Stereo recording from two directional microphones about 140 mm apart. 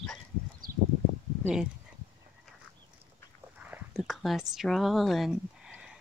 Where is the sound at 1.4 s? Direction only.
5° right (ahead or behind).